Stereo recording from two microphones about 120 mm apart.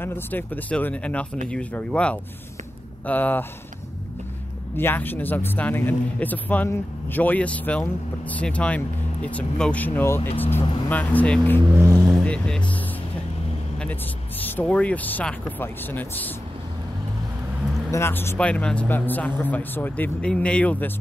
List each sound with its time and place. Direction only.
0.0 s speech: 15° left (ahead or behind)
4.7 s speech: 15° left (ahead or behind)
11.7 s speech: 25° right (ahead or behind)
12.3 s music: 10° left (ahead or behind)
14.4 s speech: 15° left (ahead or behind)
17.9 s speech: 20° left (ahead or behind)
18.4 s speech: 10° left (ahead or behind)